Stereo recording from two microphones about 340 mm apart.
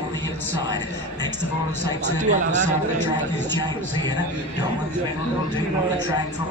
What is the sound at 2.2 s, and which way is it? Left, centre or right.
Speech, right.